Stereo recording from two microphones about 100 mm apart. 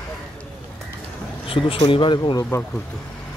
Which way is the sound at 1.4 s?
65° left (ahead or behind).